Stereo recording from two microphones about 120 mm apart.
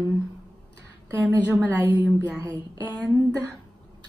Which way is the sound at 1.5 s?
20° right (ahead or behind).